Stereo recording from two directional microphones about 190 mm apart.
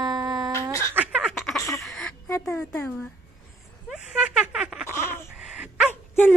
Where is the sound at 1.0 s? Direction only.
5° right (ahead or behind).